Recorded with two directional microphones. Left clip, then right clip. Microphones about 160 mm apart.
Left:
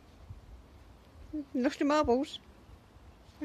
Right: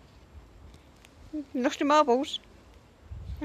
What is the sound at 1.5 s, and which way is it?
Speech, 15° left (ahead or behind).